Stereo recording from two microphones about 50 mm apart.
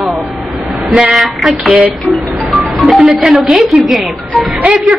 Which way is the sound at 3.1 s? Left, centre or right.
Centre.